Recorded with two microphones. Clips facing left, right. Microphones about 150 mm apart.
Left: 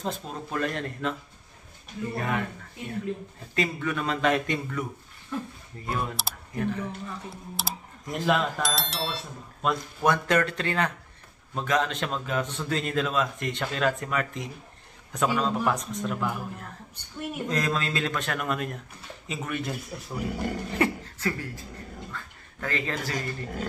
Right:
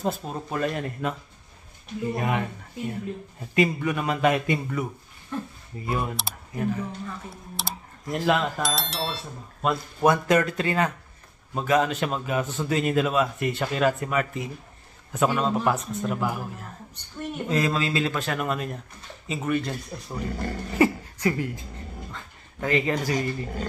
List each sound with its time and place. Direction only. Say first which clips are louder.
0.0 s a man's voice: right 4 dB; 5° right (ahead or behind)
2.1 s a man's voice: right 2 dB; 15° right (ahead or behind)
3.5 s a man's voice: right 5 dB; 15° right (ahead or behind)
5.3 s a man's voice: right 1 dB; centre (ahead or behind)
20.7 s speech: right 7 dB; 5° right (ahead or behind)
21.3 s speech: right 5 dB; 20° right (ahead or behind)
22.1 s a sound: even; 20° right (ahead or behind)